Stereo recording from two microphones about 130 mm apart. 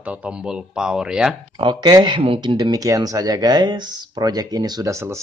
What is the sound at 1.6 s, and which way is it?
Speech, 35° right (ahead or behind).